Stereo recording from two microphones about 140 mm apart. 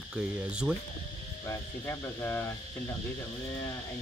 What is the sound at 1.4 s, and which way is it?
Speech, 20° left (ahead or behind).